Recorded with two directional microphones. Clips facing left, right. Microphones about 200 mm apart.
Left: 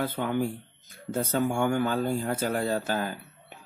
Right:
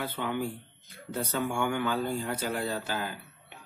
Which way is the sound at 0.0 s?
45° left (ahead or behind).